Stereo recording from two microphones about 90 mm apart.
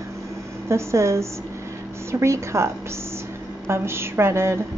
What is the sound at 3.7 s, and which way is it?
Speech, 30° right (ahead or behind).